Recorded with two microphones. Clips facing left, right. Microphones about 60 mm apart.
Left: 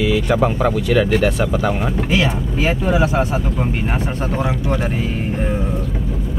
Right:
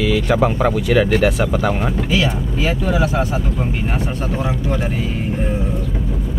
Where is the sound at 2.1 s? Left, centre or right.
Left.